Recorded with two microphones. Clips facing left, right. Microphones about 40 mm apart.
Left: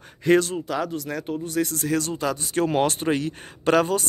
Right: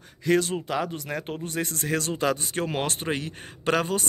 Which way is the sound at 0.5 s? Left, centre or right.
Centre.